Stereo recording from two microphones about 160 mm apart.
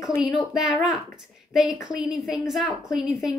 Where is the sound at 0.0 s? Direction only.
5° right (ahead or behind).